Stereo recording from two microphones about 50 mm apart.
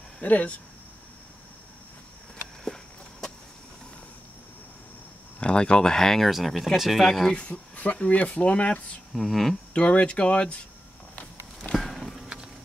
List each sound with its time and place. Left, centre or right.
0.2 s speech: left
2.6 s a sound: centre
5.4 s speech: centre
7.7 s a sound: left
8.0 s speech: left
9.1 s speech: centre
9.8 s speech: left
11.7 s music: centre